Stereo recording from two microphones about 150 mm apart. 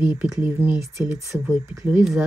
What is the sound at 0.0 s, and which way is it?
Speech, 10° right (ahead or behind).